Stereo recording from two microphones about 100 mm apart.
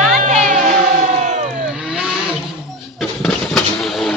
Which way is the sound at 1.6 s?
10° right (ahead or behind).